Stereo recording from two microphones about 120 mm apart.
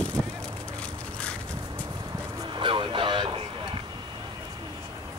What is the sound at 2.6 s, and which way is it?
Vehicle, 45° right (ahead or behind).